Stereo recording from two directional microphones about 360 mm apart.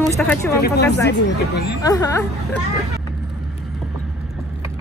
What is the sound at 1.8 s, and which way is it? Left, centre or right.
Speech, centre.